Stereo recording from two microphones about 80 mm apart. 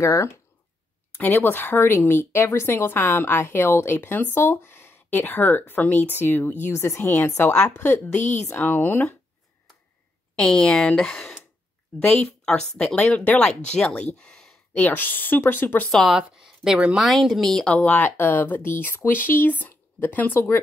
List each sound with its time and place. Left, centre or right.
0.0 s a woman's voice: left
1.1 s a woman's voice: left
7.8 s speech: left
10.3 s speech: centre
14.8 s speech: left
15.9 s speech: centre
16.2 s speech: centre
17.7 s speech: left